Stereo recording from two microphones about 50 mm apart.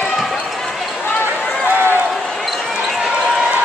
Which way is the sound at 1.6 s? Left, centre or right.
Right.